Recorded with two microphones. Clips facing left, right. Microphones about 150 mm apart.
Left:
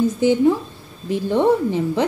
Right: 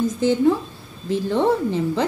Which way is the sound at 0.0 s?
10° left (ahead or behind).